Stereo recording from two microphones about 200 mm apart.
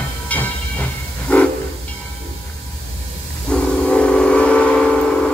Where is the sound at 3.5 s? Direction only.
5° left (ahead or behind).